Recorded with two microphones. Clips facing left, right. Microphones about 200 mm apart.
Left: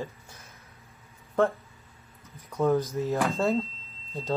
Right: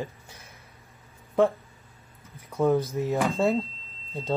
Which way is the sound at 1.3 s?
15° right (ahead or behind).